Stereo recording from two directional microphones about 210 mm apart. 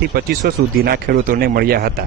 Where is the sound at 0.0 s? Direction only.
45° right (ahead or behind).